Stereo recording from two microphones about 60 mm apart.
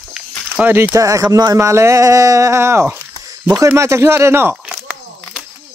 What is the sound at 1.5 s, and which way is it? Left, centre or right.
Speech, right.